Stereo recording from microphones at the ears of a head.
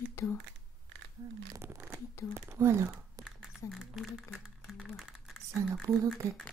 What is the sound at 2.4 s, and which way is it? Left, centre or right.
Speech, right.